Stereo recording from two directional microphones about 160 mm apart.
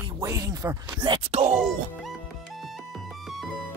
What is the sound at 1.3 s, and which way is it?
Speech, 40° right (ahead or behind).